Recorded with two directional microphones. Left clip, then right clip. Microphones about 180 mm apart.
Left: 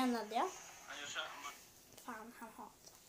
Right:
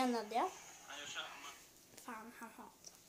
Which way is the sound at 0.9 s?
10° left (ahead or behind).